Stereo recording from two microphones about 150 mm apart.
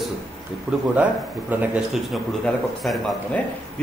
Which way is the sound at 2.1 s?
5° left (ahead or behind).